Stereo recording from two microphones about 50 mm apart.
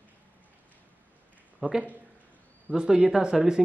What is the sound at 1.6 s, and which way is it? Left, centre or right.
Speech, centre.